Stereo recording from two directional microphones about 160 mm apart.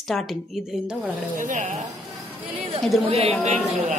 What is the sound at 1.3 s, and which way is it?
Speech, 55° right (ahead or behind).